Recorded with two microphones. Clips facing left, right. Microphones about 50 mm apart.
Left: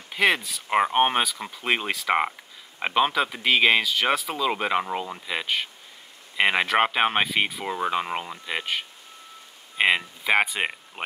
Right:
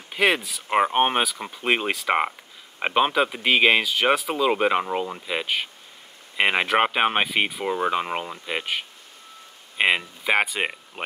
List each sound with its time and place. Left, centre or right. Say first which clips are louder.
0.1 s speech: right 1 dB; centre